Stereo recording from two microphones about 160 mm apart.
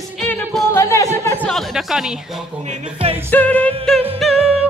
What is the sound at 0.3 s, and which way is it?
Music, 5° left (ahead or behind).